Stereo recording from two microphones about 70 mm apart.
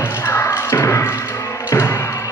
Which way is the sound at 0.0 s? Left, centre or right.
Left.